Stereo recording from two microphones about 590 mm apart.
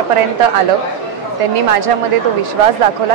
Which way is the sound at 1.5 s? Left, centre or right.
Right.